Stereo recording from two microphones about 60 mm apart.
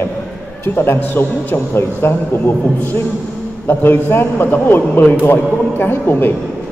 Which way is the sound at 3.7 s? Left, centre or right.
Left.